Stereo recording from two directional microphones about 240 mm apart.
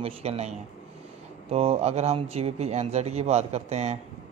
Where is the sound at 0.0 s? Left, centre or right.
Right.